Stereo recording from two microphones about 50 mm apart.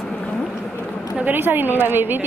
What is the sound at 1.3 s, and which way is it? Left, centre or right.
Speech, right.